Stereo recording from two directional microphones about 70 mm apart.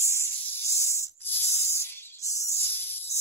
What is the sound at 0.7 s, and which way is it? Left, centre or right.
Sanding, left.